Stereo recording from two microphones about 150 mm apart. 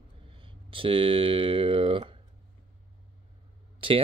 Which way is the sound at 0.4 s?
35° right (ahead or behind).